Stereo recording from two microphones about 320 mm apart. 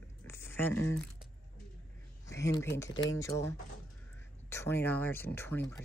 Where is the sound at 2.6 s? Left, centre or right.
Centre.